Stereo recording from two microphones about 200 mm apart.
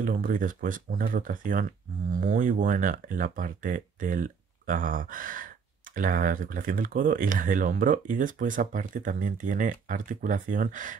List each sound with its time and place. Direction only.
0.0 s speech: 45° right (ahead or behind)